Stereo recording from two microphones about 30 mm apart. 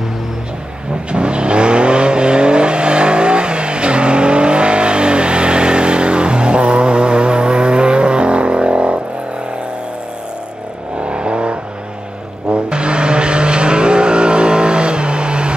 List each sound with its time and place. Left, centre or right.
1.1 s vehicle: right
11.0 s vehicle: right